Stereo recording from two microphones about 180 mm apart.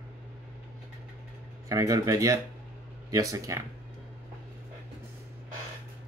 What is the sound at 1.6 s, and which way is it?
Speech, 20° right (ahead or behind).